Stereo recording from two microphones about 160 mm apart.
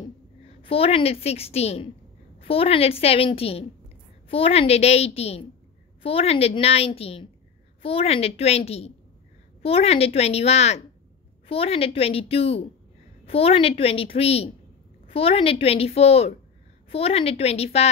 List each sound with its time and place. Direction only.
0.6 s a woman's voice: 35° left (ahead or behind)